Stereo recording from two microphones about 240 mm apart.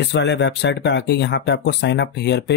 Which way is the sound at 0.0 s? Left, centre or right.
Left.